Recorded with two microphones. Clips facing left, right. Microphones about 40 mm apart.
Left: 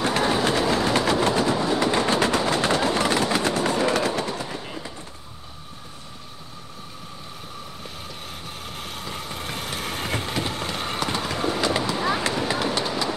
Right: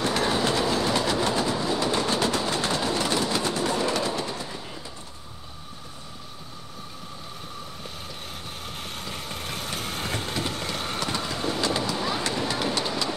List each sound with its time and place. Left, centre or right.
0.2 s train: left
0.5 s train: left
8.7 s vehicle: centre
9.5 s vehicle: left
12.4 s run: left